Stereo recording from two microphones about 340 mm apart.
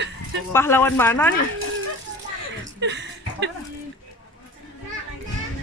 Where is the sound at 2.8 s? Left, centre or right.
Right.